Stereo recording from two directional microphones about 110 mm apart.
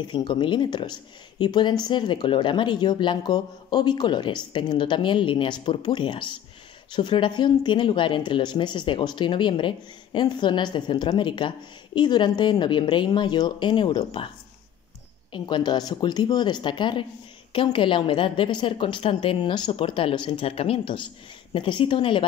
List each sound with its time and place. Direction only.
0.1 s speech: 45° left (ahead or behind)
15.3 s a woman's voice: 40° left (ahead or behind)